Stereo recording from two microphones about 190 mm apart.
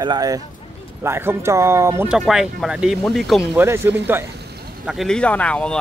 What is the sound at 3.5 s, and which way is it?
Speech, 15° right (ahead or behind).